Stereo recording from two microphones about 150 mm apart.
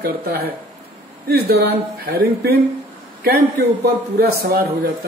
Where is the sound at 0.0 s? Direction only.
90° right.